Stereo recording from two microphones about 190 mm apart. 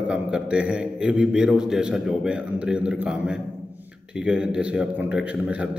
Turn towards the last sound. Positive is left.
turn(degrees=-5)  # may be behind; listen again after turning